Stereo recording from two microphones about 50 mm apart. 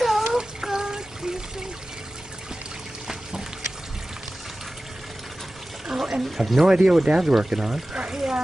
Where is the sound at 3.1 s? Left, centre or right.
Centre.